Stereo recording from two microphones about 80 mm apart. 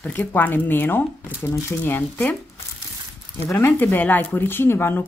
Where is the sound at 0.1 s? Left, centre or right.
Left.